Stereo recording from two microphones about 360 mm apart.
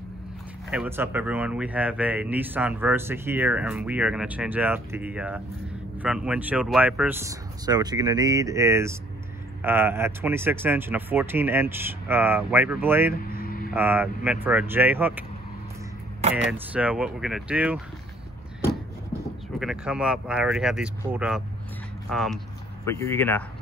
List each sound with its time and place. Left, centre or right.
0.7 s speech: centre
13.1 s vehicle: left
13.7 s speech: centre
16.4 s speech: centre
19.6 s speech: centre